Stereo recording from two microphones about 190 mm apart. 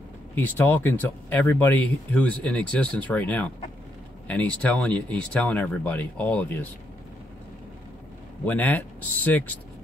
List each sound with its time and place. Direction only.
0.3 s speech: 10° left (ahead or behind)
8.5 s speech: 10° left (ahead or behind)